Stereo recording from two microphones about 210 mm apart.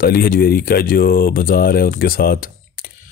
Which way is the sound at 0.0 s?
45° left (ahead or behind).